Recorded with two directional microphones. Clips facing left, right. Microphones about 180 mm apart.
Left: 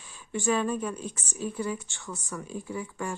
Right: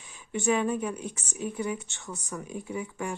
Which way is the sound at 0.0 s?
20° right (ahead or behind).